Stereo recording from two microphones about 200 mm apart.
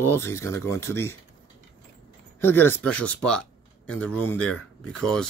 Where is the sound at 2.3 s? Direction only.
10° left (ahead or behind).